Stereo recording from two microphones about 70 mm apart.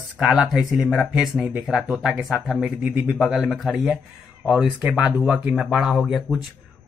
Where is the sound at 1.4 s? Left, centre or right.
Centre.